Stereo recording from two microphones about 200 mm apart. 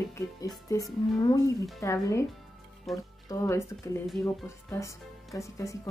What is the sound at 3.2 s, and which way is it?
A woman's voice, 15° left (ahead or behind).